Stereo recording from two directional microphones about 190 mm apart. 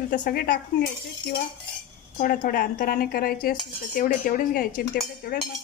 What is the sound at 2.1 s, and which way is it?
A woman's voice, 45° left (ahead or behind).